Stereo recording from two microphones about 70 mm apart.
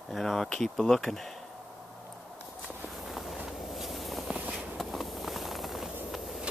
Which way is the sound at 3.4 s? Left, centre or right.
Centre.